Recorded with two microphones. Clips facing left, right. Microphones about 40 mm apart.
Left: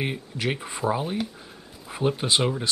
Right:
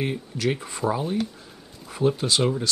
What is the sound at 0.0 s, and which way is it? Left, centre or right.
Speech, centre.